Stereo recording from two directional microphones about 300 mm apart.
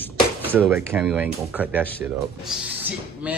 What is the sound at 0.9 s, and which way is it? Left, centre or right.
A man's voice, centre.